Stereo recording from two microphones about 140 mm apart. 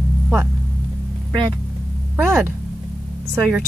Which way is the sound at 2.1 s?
15° right (ahead or behind).